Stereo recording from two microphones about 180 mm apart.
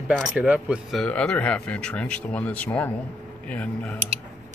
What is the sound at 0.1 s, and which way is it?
A man's voice, 5° right (ahead or behind).